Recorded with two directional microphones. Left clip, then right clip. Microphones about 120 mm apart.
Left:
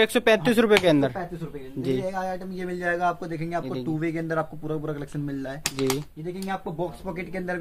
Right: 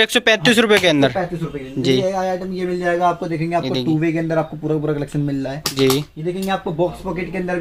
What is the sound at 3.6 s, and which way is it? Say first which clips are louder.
Speech: right 10 dB; 5° left (ahead or behind).